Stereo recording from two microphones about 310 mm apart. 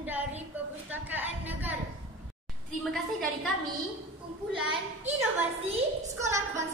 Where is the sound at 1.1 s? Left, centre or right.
Centre.